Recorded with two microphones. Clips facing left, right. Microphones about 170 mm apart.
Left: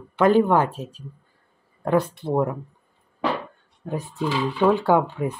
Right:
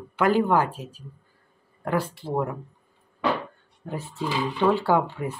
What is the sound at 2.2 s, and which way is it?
Speech, 20° left (ahead or behind).